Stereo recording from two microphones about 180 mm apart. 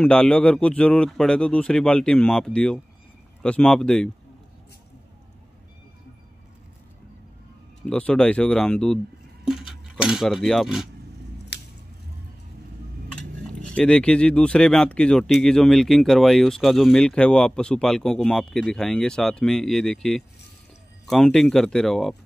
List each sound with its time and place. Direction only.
0.0 s speech: 5° left (ahead or behind)
7.8 s speech: 5° left (ahead or behind)
11.5 s scissors: 70° left (ahead or behind)
13.1 s speech: 5° left (ahead or behind)